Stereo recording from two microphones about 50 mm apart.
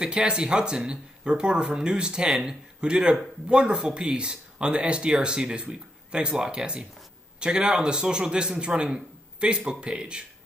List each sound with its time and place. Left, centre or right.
0.0 s speech: centre